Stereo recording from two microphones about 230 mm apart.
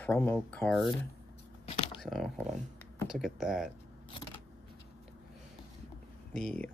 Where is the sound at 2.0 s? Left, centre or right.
Centre.